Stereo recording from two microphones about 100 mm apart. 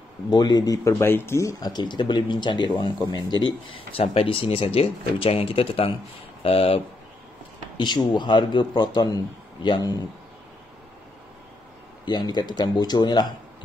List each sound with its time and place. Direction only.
0.3 s speech: 40° left (ahead or behind)
1.7 s a man's voice: 50° left (ahead or behind)
3.9 s speech: 70° left (ahead or behind)
7.7 s a man's voice: 50° left (ahead or behind)
12.0 s a man's voice: 50° left (ahead or behind)